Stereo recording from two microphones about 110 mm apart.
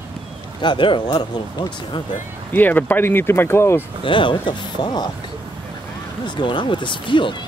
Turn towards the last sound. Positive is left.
turn(degrees=45)  # may be behind; listen again after turning